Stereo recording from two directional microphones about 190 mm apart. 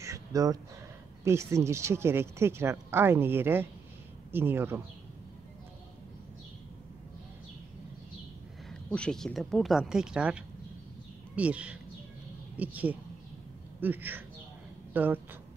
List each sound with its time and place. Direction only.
0.0 s a sound: 15° right (ahead or behind)
1.2 s speech: 15° right (ahead or behind)
8.6 s speech: 5° left (ahead or behind)